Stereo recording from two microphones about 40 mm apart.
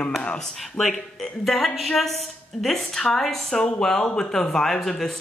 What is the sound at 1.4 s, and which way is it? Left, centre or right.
Speech, centre.